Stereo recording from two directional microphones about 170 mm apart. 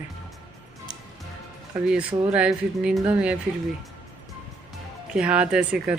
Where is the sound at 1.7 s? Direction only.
10° right (ahead or behind).